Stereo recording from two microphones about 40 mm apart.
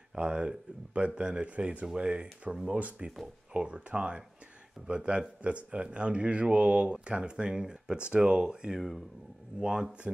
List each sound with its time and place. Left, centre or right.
0.2 s speech: right
8.7 s speech: centre
9.6 s speech: centre
10.1 s speech: right